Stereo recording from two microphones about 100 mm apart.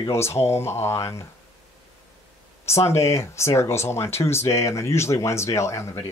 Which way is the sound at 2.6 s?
25° left (ahead or behind).